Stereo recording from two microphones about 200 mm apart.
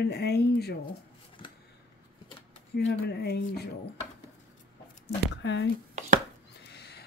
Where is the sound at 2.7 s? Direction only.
55° left (ahead or behind).